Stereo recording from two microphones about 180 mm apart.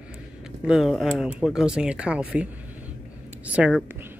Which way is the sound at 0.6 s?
Centre (ahead or behind).